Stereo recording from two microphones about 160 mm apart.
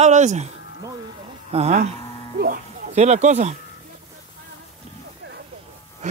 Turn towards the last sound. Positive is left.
turn(degrees=-45)  # may be behind; listen again after turning